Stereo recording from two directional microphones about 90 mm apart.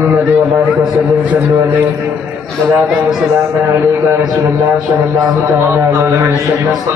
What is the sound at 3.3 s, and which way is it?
A man's voice, 30° right (ahead or behind).